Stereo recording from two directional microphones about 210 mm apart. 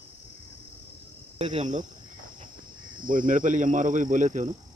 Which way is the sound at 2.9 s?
40° right (ahead or behind).